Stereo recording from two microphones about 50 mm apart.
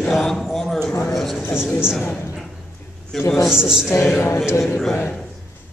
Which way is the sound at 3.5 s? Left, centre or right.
Centre.